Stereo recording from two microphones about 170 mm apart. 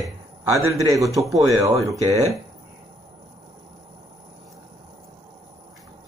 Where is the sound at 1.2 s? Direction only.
Centre (ahead or behind).